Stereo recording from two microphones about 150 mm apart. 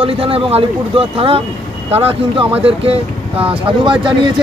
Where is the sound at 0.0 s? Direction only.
40° right (ahead or behind).